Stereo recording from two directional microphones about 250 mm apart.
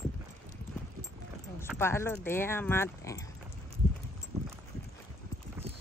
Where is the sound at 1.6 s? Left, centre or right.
Centre.